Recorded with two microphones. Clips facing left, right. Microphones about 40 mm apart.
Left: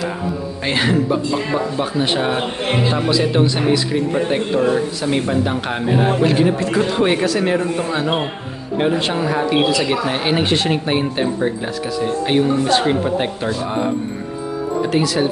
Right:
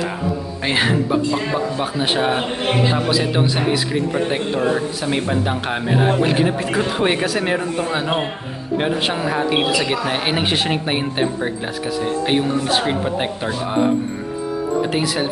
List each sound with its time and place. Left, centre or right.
0.7 s speech: centre
14.9 s speech: centre